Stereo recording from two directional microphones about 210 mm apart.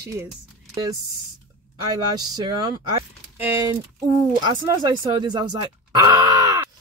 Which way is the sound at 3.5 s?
15° right (ahead or behind).